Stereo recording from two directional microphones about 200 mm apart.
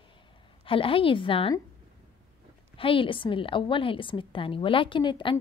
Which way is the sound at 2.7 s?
25° left (ahead or behind).